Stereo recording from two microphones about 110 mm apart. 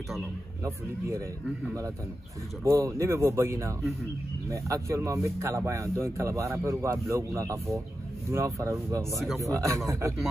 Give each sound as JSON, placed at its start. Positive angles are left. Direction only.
{"t": 0.7, "sound": "speech", "side_deg": -25}
{"t": 2.6, "sound": "speech", "side_deg": -30}